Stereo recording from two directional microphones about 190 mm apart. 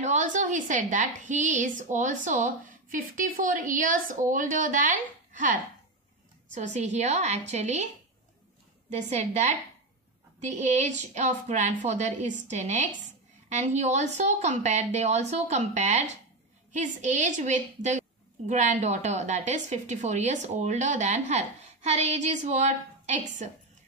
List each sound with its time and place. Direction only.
0.0 s a woman's voice: 40° right (ahead or behind)
8.9 s a woman's voice: 35° right (ahead or behind)